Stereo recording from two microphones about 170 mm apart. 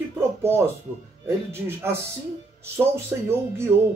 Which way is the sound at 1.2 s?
15° right (ahead or behind).